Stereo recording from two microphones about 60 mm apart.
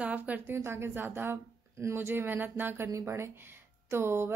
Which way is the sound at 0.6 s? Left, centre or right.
Right.